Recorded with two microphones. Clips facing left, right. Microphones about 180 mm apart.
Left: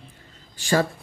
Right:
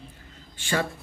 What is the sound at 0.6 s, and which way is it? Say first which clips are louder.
Speech: left 6 dB; 40° left (ahead or behind).